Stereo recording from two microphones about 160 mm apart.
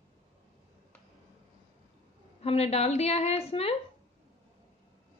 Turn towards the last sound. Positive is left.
turn(degrees=40)  # may be behind; listen again after turning